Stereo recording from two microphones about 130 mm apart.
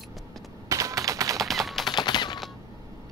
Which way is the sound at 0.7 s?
25° right (ahead or behind).